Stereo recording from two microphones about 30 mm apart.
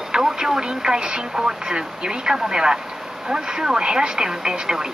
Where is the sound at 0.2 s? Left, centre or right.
Centre.